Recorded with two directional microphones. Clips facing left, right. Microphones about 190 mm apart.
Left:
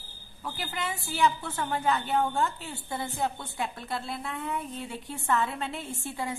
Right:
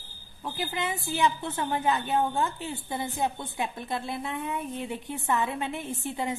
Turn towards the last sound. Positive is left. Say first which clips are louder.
# right 3 dB
turn(degrees=-20)  # may be behind; listen again after turning